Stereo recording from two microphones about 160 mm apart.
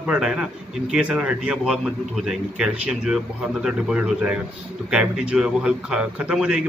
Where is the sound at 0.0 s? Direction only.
5° right (ahead or behind).